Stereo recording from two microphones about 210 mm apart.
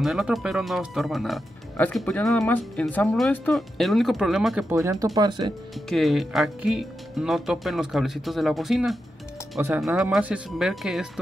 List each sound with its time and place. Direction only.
0.0 s speech: centre (ahead or behind)
4.7 s speech: 15° right (ahead or behind)
5.9 s speech: centre (ahead or behind)